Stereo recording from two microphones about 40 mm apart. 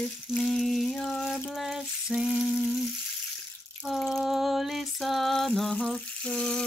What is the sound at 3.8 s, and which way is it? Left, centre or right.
Drip, centre.